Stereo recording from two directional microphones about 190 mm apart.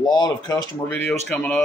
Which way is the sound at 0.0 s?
20° left (ahead or behind).